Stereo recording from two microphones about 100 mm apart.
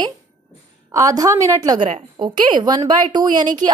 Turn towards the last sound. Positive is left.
turn(degrees=-45)  # may be behind; listen again after turning